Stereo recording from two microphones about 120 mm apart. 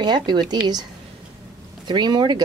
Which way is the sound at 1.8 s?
35° right (ahead or behind).